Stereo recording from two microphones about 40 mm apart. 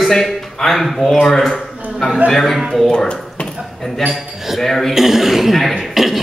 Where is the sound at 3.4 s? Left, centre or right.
Left.